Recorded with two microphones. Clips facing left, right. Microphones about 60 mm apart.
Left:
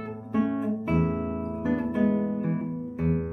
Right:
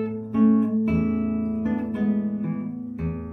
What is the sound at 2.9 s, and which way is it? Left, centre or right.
Music, centre.